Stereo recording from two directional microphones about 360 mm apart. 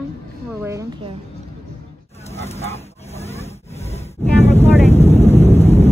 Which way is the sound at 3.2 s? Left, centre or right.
Centre.